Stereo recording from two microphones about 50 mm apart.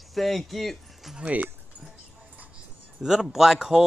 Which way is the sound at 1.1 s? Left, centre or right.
Right.